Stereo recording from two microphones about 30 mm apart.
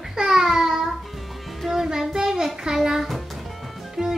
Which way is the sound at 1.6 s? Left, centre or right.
Centre.